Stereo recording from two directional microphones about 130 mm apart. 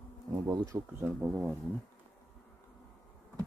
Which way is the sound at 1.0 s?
10° right (ahead or behind).